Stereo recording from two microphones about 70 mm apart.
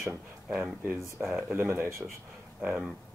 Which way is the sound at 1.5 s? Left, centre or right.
Right.